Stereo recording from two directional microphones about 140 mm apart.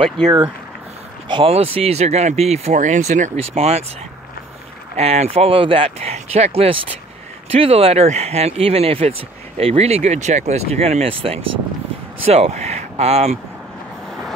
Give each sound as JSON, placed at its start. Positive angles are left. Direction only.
{"t": 1.3, "sound": "speech", "side_deg": -45}
{"t": 4.9, "sound": "speech", "side_deg": -50}